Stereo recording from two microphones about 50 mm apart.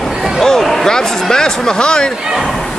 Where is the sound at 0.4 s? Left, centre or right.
Centre.